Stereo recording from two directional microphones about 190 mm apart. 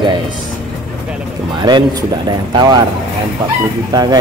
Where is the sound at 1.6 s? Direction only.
25° right (ahead or behind).